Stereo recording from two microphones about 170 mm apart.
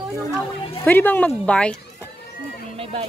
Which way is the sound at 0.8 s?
10° left (ahead or behind).